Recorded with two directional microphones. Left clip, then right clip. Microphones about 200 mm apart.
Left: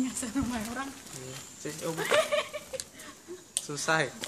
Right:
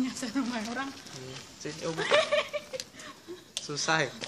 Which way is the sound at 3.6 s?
5° left (ahead or behind).